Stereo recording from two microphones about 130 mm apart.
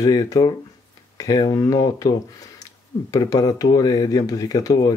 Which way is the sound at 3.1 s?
25° left (ahead or behind).